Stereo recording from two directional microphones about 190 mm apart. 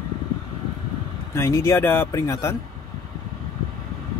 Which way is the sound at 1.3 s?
15° left (ahead or behind).